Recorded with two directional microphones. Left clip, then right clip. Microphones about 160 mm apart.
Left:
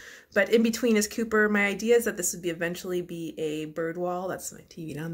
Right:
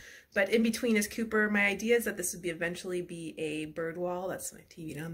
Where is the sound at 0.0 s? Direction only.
40° left (ahead or behind).